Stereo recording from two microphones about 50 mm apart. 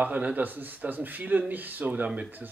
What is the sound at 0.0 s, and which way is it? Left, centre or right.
A man's voice, right.